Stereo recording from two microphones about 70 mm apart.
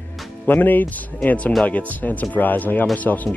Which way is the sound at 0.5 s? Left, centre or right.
Left.